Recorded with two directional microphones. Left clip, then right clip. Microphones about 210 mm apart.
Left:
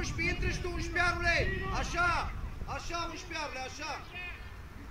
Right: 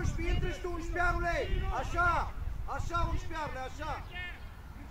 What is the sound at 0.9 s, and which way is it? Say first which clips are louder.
A man's voice: left 3 dB; 20° left (ahead or behind).